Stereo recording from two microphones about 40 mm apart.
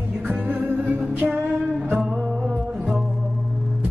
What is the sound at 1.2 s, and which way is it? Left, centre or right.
Music, right.